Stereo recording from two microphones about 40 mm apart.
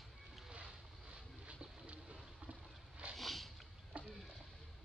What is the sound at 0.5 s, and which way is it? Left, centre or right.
Boat, centre.